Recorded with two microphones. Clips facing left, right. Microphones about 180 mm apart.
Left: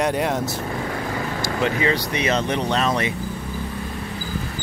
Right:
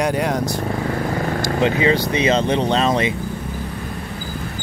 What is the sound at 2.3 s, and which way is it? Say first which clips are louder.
Speech: right 4 dB; 25° right (ahead or behind).